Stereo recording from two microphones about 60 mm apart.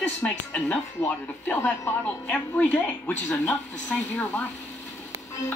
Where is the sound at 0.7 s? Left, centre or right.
Left.